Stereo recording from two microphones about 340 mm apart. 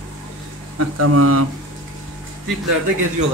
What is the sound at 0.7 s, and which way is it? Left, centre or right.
Speech, right.